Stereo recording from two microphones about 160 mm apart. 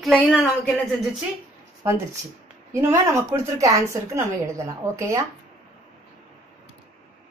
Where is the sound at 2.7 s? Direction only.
15° right (ahead or behind).